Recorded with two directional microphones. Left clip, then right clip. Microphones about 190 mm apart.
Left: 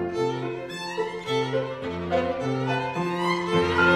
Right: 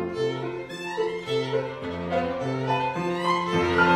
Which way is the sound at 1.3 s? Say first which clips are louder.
Left 1 dB; 15° left (ahead or behind).